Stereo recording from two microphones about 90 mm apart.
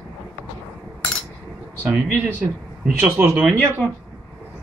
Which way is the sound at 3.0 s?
20° right (ahead or behind).